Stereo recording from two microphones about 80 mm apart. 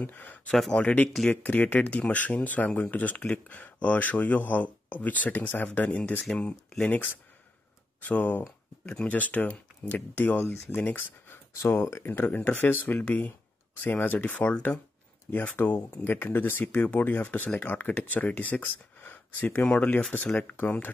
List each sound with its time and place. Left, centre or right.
0.0 s speech: left
0.5 s speech: centre
8.0 s speech: centre
10.4 s speech: left
10.8 s speech: left
11.6 s speech: left